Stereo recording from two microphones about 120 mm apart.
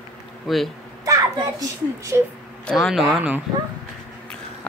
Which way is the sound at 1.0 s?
30° right (ahead or behind).